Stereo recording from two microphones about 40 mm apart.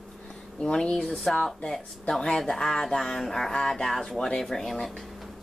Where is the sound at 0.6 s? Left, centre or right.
Left.